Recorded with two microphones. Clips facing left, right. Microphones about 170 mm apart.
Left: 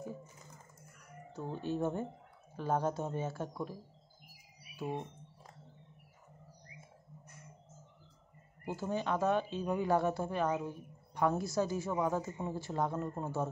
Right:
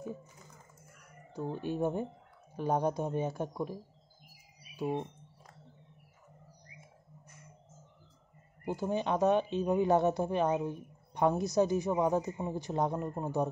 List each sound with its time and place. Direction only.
1.3 s speech: 15° right (ahead or behind)
4.7 s speech: 15° right (ahead or behind)
8.6 s speech: 15° right (ahead or behind)